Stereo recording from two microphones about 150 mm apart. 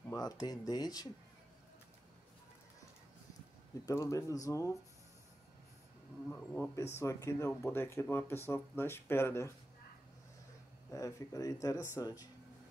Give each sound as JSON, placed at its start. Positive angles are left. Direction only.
{"t": 0.1, "sound": "speech", "side_deg": 25}
{"t": 3.8, "sound": "speech", "side_deg": 20}
{"t": 6.5, "sound": "speech", "side_deg": 15}
{"t": 10.9, "sound": "speech", "side_deg": 20}